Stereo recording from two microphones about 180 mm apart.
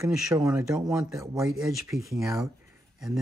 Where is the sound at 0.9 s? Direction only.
15° right (ahead or behind).